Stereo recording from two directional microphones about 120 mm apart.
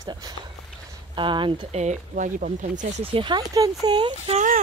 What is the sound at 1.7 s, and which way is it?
Speech, 85° right.